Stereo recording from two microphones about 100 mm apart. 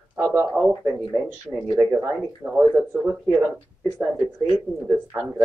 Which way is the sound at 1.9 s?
20° right (ahead or behind).